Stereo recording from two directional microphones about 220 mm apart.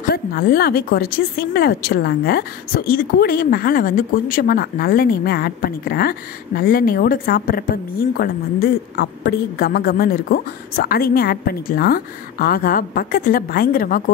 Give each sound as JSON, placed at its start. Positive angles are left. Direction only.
{"t": 0.0, "sound": "speech", "side_deg": 45}